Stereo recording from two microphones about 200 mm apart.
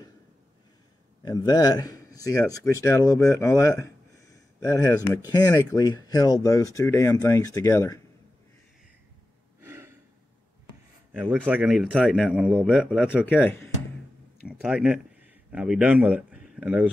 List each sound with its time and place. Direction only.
1.2 s speech: 20° left (ahead or behind)
9.6 s gasp: 10° right (ahead or behind)
11.3 s a man's voice: centre (ahead or behind)
13.2 s speech: 10° left (ahead or behind)
14.6 s a man's voice: 5° right (ahead or behind)